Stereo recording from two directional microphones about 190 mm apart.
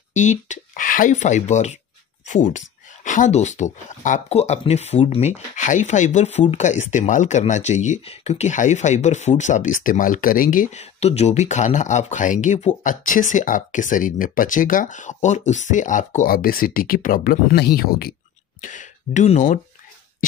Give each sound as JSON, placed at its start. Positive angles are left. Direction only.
{"t": 0.1, "sound": "speech", "side_deg": 40}
{"t": 18.6, "sound": "speech", "side_deg": 40}